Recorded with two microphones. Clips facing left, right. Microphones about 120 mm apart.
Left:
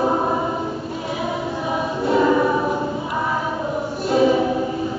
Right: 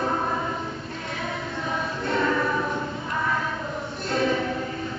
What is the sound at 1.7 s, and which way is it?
Choir, 15° left (ahead or behind).